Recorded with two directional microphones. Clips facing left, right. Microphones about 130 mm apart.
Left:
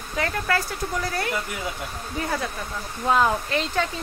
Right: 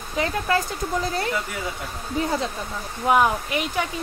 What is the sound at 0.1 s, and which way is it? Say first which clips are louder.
Speech: right 2 dB; 20° right (ahead or behind).